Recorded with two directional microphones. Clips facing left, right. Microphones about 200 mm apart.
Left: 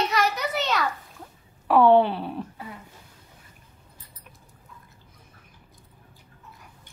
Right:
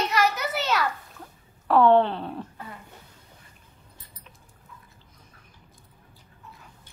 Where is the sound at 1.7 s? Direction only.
10° left (ahead or behind).